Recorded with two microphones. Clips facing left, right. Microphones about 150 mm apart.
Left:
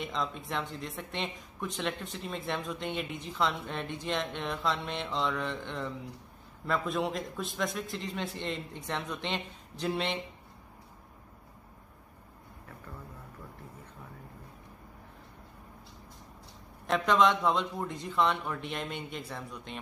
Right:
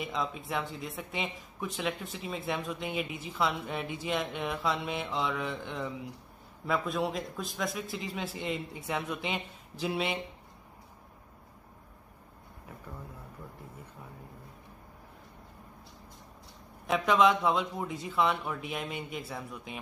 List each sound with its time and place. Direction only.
0.0 s speech: 5° right (ahead or behind)
16.8 s speech: 5° right (ahead or behind)